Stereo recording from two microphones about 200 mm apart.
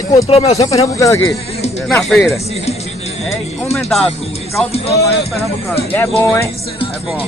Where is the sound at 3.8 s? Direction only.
Centre (ahead or behind).